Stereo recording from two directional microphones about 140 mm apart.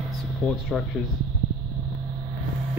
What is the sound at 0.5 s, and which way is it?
Speech, 5° left (ahead or behind).